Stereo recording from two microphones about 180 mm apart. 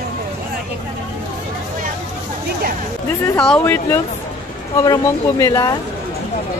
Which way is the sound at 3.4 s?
10° left (ahead or behind).